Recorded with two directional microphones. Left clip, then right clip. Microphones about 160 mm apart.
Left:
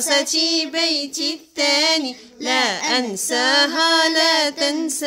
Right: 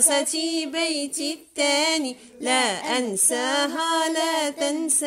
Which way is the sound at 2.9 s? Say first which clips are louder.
Left 4 dB; 10° right (ahead or behind).